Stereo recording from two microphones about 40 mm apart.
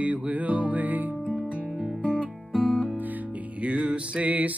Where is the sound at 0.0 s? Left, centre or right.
Right.